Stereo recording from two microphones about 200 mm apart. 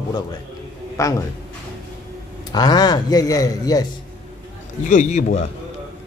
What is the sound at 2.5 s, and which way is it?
Speech, 20° left (ahead or behind).